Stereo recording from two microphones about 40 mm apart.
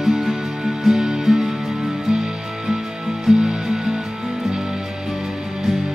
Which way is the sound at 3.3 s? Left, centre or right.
Centre.